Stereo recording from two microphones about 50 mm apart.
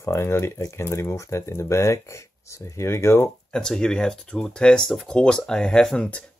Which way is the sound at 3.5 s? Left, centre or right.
Centre.